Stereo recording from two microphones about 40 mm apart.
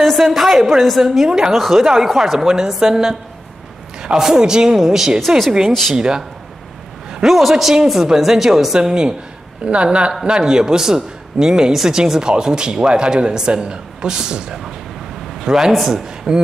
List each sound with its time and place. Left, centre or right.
0.0 s a woman's voice: centre
5.7 s speech: centre
5.9 s speech: right
7.2 s a woman's voice: centre
15.7 s a woman's voice: centre
16.3 s speech: right